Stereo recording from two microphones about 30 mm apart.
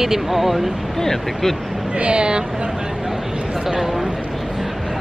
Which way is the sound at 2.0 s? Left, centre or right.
Right.